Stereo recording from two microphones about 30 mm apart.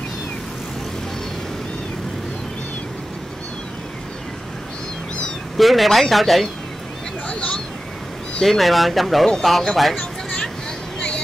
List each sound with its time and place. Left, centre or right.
5.6 s speech: centre
7.2 s a sound: left
8.4 s speech: centre